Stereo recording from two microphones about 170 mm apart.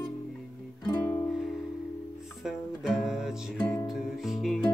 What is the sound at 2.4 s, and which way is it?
Music, 5° right (ahead or behind).